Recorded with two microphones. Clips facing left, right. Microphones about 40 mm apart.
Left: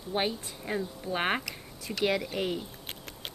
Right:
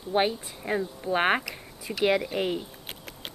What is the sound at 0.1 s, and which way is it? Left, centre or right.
Speech, centre.